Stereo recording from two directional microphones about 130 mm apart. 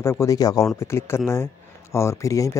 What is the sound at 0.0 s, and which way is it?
Speech, 20° left (ahead or behind).